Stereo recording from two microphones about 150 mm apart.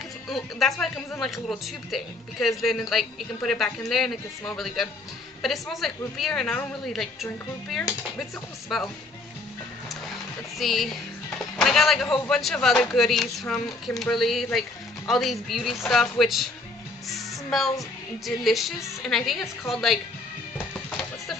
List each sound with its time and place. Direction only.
0.3 s a woman's voice: centre (ahead or behind)
10.0 s a woman's voice: centre (ahead or behind)
17.1 s music: centre (ahead or behind)
18.2 s a woman's voice: centre (ahead or behind)